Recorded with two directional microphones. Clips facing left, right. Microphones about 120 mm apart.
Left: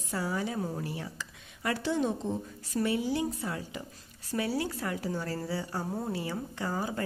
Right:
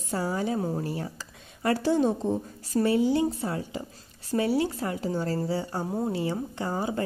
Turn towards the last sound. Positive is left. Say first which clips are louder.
# right 4 dB
turn(degrees=-25)  # may be behind; listen again after turning